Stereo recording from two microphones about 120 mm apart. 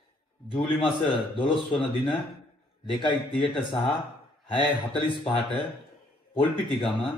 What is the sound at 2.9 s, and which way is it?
Speech, 40° left (ahead or behind).